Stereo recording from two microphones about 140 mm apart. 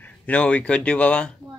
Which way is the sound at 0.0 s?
10° left (ahead or behind).